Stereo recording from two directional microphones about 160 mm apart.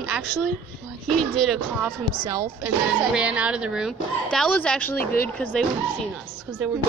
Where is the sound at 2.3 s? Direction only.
20° right (ahead or behind).